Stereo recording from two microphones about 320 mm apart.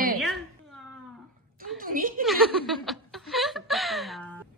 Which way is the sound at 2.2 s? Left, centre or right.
Centre.